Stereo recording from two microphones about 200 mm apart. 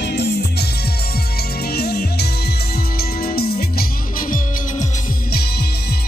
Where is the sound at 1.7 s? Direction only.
55° left (ahead or behind).